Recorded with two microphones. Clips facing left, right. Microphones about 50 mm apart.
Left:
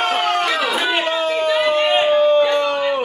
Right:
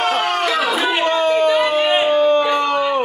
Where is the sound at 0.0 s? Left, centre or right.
Centre.